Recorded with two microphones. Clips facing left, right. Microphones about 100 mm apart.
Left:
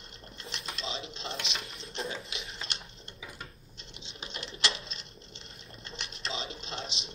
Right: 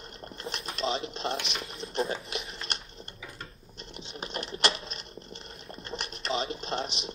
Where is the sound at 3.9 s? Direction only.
50° right (ahead or behind).